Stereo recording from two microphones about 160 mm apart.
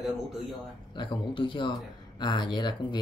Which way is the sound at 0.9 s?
30° left (ahead or behind).